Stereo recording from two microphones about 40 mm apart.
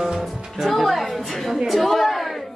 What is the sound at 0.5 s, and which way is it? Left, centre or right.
A woman's voice, centre.